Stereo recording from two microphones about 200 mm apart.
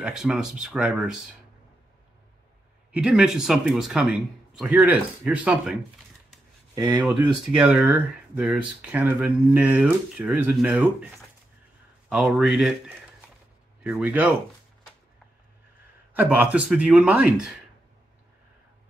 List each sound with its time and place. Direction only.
0.0 s speech: 5° right (ahead or behind)
2.9 s speech: 5° right (ahead or behind)
6.7 s a sound: 20° right (ahead or behind)
7.0 s speech: 5° right (ahead or behind)
16.1 s speech: 10° right (ahead or behind)